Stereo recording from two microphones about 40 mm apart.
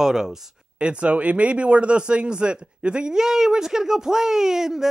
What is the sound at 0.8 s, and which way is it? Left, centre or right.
Speech, right.